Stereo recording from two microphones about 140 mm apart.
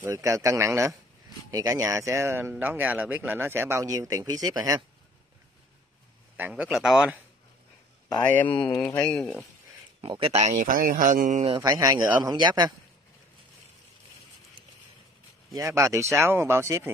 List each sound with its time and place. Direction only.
0.0 s a man's voice: 20° right (ahead or behind)
6.5 s speech: 5° right (ahead or behind)
8.8 s speech: 15° left (ahead or behind)
9.1 s speech: centre (ahead or behind)
10.0 s speech: 40° right (ahead or behind)
10.5 s speech: 70° right (ahead or behind)
11.4 s speech: 30° right (ahead or behind)
15.5 s speech: 20° right (ahead or behind)